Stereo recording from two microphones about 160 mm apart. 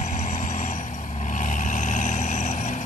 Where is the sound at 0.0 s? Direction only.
50° left (ahead or behind).